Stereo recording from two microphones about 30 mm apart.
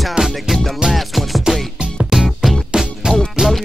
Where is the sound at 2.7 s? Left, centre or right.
Right.